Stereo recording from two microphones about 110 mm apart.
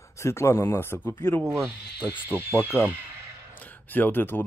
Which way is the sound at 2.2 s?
20° left (ahead or behind).